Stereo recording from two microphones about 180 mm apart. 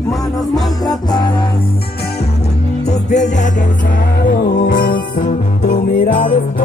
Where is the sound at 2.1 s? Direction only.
35° left (ahead or behind).